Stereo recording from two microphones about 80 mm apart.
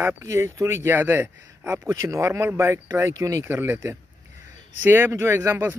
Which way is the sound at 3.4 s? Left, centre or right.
Right.